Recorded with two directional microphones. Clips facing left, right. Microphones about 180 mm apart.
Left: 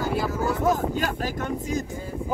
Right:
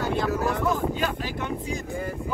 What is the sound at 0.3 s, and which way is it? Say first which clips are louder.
Vehicle: right 1 dB; 70° right (ahead or behind).